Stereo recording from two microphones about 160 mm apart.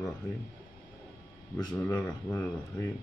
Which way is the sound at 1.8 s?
15° left (ahead or behind).